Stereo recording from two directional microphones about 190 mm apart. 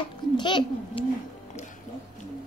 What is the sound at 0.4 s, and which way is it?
Speech, 25° left (ahead or behind).